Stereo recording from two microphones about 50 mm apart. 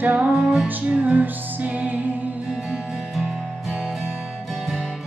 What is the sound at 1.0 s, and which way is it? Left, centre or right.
Music, right.